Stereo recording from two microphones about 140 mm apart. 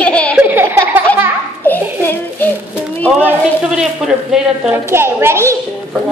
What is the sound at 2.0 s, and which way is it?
Speech, 15° left (ahead or behind).